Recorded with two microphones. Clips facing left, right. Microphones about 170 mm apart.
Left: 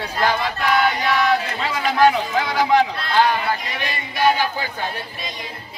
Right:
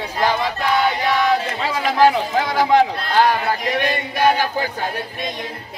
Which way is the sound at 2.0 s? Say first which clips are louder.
Right 1 dB; 35° right (ahead or behind).